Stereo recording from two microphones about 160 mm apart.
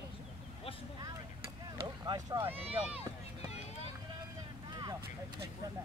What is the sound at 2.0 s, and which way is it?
Speech, 25° right (ahead or behind).